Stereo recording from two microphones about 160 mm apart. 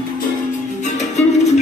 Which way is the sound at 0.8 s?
45° left (ahead or behind).